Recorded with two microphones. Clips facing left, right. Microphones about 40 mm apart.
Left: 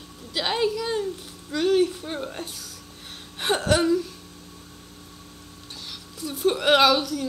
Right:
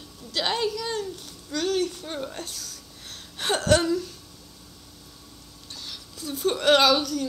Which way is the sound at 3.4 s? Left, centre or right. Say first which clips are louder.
Even; centre.